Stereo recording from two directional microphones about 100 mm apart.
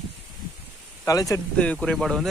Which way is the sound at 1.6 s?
10° left (ahead or behind).